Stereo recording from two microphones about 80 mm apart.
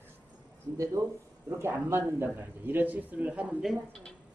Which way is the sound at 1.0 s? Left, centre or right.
Right.